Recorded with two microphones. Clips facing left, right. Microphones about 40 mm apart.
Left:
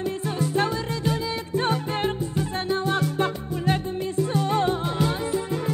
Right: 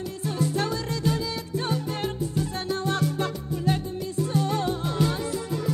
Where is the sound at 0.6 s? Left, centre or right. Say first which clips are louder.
Left 3 dB; left.